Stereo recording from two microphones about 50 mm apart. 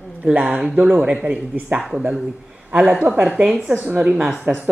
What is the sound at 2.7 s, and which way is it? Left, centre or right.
Speech, right.